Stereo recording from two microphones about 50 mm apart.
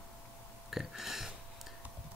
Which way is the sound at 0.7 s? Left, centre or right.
Centre.